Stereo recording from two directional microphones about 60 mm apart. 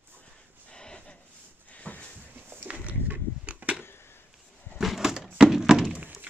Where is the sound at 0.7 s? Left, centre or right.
Centre.